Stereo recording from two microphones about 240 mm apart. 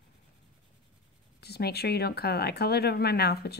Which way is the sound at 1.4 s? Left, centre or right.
Left.